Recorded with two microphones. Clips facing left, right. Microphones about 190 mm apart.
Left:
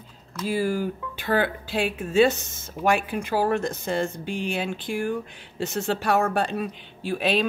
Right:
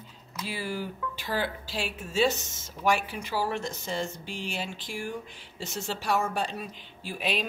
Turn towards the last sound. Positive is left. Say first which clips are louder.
# left 8 dB
turn(degrees=70)  # may be behind; listen again after turning